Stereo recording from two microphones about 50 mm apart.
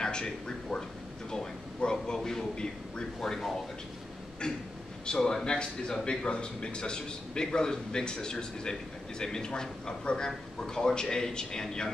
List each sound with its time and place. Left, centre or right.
0.0 s a man's voice: centre
5.0 s a man's voice: centre